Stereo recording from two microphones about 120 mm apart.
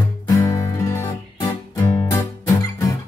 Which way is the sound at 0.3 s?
25° left (ahead or behind).